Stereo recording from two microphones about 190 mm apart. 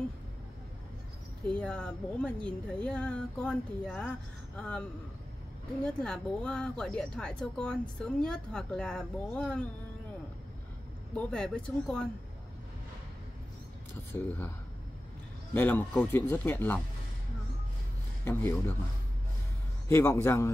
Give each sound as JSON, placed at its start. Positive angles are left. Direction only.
{"t": 1.6, "sound": "speech", "side_deg": 5}
{"t": 6.0, "sound": "speech", "side_deg": 5}
{"t": 11.1, "sound": "speech", "side_deg": 5}
{"t": 14.1, "sound": "speech", "side_deg": 15}
{"t": 15.5, "sound": "speech", "side_deg": 10}
{"t": 18.2, "sound": "speech", "side_deg": 15}
{"t": 19.9, "sound": "speech", "side_deg": 15}